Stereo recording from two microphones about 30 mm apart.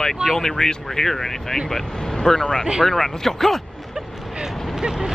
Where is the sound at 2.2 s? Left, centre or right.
Left.